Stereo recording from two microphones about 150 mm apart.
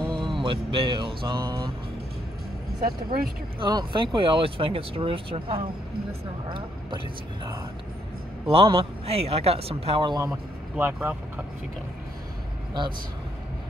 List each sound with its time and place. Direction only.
0.1 s mantra: 35° right (ahead or behind)
2.8 s speech: 85° right
3.5 s speech: 35° right (ahead or behind)
8.5 s speech: 40° right (ahead or behind)
10.3 s speech: 10° right (ahead or behind)